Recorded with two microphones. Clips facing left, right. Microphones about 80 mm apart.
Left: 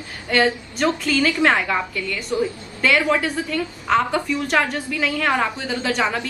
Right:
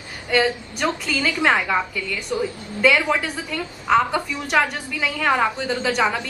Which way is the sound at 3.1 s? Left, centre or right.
Centre.